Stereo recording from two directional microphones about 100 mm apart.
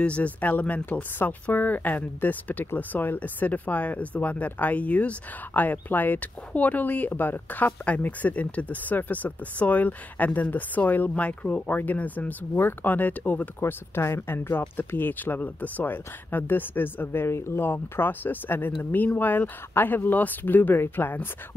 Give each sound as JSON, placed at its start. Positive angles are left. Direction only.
{"t": 0.0, "sound": "speech", "side_deg": 10}